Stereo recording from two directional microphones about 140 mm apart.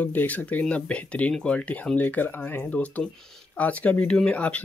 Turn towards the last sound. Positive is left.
turn(degrees=10)  # may be behind; listen again after turning